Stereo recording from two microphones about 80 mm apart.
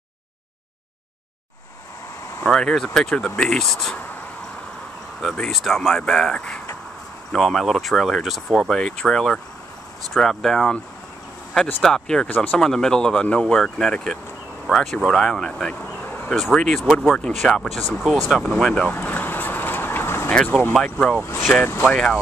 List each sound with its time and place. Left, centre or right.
2.4 s speech: centre
5.2 s speech: centre
11.8 s speech: centre
18.9 s vehicle: left
20.8 s speech: centre
21.6 s speech: left